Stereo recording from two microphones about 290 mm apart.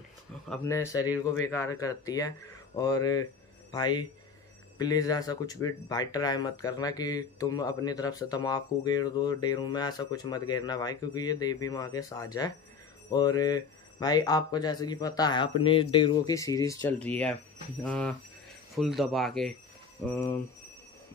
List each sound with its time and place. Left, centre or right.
0.5 s speech: centre